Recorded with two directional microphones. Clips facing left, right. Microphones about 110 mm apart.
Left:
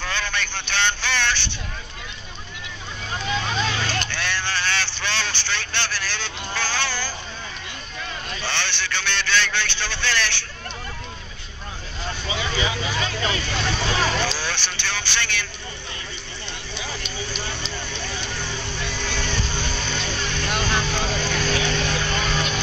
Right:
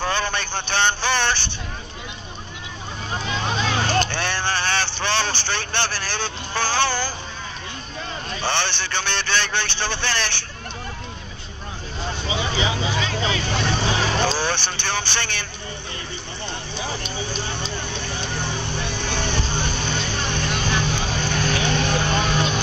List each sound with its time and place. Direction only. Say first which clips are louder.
0.0 s a sound: right 4 dB; 45° right (ahead or behind)
3.1 s vehicle: even; 30° right (ahead or behind); by 7.1 s 50° right (ahead or behind)
8.3 s a man's voice: right 5 dB; 45° right (ahead or behind)
12.4 s speech: right 2 dB; 25° right (ahead or behind)
14.1 s a man's voice: right 4 dB; 45° right (ahead or behind)
18.3 s vehicle: right 3 dB; 50° right (ahead or behind)
18.7 s music: right 2 dB; 50° right (ahead or behind)
19.9 s vehicle: right 2 dB; 50° right (ahead or behind)